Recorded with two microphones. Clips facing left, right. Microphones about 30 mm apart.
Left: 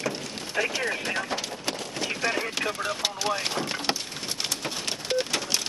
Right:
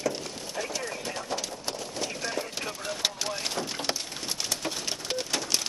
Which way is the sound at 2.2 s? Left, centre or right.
Left.